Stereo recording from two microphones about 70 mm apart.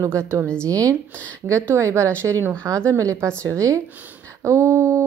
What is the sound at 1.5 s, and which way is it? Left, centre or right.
Speech, right.